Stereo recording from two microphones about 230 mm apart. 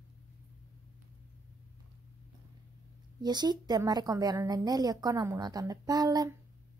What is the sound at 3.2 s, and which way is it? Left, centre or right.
A woman's voice, centre.